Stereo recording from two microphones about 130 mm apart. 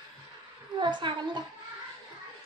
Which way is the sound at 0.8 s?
35° right (ahead or behind).